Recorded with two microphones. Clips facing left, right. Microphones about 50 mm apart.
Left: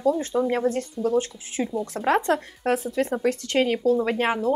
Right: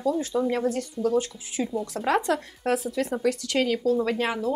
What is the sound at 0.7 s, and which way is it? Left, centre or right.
Speech, left.